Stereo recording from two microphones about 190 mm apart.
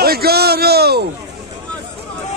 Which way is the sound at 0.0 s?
55° right (ahead or behind).